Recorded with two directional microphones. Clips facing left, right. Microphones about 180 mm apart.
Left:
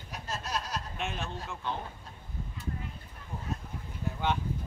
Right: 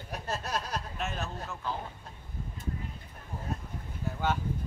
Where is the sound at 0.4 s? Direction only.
55° right (ahead or behind).